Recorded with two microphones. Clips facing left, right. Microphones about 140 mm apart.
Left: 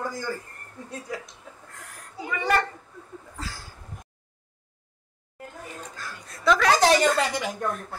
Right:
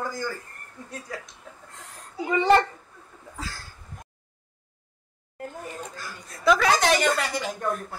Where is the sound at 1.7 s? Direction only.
20° right (ahead or behind).